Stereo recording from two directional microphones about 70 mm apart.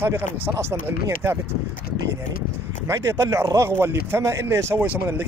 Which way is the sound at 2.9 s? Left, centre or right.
Right.